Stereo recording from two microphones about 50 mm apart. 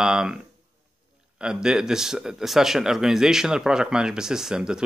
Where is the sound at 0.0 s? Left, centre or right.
Centre.